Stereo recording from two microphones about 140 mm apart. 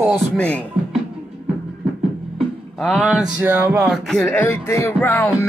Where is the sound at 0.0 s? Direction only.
5° left (ahead or behind).